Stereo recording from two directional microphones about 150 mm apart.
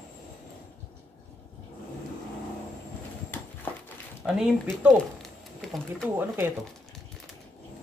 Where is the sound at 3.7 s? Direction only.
15° left (ahead or behind).